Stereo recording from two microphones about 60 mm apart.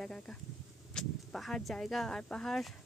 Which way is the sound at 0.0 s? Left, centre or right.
Centre.